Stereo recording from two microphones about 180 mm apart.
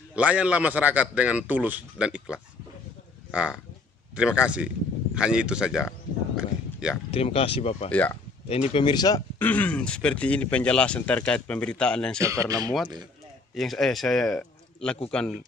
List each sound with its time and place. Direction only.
0.1 s a man's voice: 5° right (ahead or behind)
7.1 s speech: 35° left (ahead or behind)
7.9 s speech: 10° left (ahead or behind)
8.5 s speech: 35° left (ahead or behind)
9.4 s speech: 10° left (ahead or behind)
12.2 s speech: 15° right (ahead or behind)
13.6 s speech: centre (ahead or behind)